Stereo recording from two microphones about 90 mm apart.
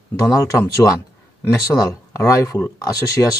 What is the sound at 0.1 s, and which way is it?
Speech, 40° left (ahead or behind).